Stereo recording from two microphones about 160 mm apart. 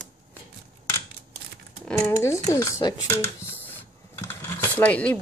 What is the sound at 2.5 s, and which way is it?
A child's voice, 20° left (ahead or behind).